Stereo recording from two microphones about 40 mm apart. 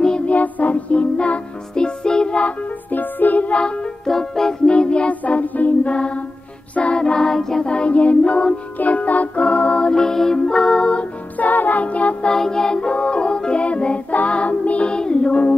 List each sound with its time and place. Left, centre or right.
0.3 s music: left
1.1 s music: left
2.9 s music: left
4.0 s music: centre
4.6 s music: left
5.2 s music: left
5.9 s music: left
6.7 s a capella: left; by 7.6 s centre
7.6 s music: left
11.3 s music: left
12.3 s music: centre; by 14.9 s left
14.9 s music: left